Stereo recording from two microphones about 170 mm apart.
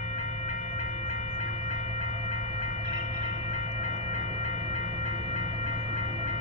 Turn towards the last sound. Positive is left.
turn(degrees=-35)  # may be behind; listen again after turning